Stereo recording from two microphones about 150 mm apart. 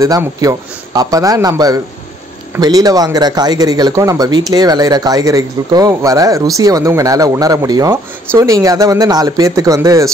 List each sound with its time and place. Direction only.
0.0 s speech: 20° right (ahead or behind)